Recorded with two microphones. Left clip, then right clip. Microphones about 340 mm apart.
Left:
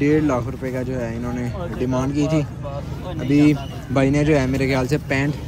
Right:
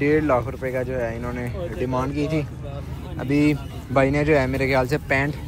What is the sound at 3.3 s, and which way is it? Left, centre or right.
Speech, centre.